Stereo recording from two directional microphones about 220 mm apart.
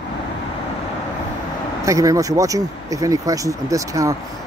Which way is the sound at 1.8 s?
15° right (ahead or behind).